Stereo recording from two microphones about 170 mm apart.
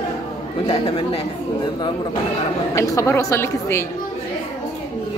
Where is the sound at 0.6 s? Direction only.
30° left (ahead or behind).